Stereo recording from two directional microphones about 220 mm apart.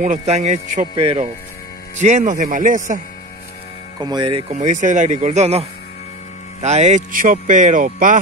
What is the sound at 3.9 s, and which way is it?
Speech, 20° right (ahead or behind).